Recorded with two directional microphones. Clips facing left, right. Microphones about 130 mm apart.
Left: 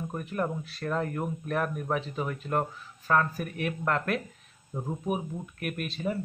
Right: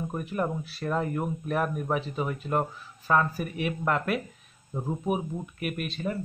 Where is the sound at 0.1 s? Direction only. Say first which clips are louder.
Even; 10° right (ahead or behind).